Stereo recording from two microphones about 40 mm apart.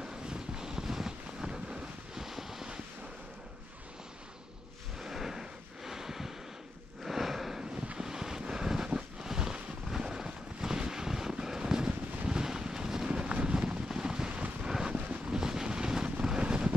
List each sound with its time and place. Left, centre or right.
0.0 s vehicle: centre
4.9 s a sound: centre
8.0 s vehicle: centre
14.3 s vehicle: right
15.2 s vehicle: centre